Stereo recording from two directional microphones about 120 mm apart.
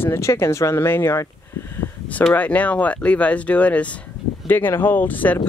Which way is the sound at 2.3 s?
10° left (ahead or behind).